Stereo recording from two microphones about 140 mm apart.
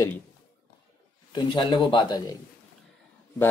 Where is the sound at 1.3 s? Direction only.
35° left (ahead or behind).